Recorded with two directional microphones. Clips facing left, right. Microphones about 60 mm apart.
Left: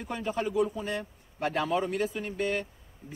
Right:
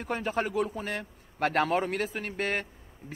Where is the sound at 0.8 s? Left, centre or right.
Right.